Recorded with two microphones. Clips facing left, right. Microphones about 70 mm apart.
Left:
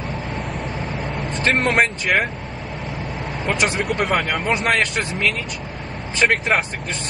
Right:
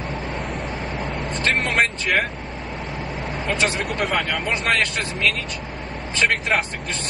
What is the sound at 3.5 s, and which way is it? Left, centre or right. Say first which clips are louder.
Speech: left 1 dB; left.